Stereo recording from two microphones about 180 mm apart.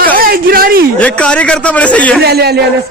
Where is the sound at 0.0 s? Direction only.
55° right (ahead or behind).